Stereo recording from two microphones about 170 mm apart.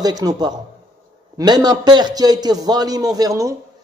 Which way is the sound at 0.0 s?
25° right (ahead or behind).